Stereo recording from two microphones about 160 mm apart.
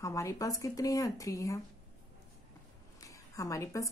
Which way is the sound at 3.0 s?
20° left (ahead or behind).